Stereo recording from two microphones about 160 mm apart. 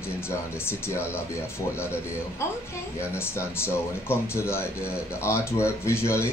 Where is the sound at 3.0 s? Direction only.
15° left (ahead or behind).